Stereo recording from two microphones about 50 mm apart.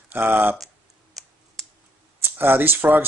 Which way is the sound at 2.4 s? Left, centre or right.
Right.